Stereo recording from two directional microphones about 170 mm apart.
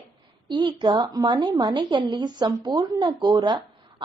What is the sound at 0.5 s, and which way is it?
A woman's voice, 30° right (ahead or behind).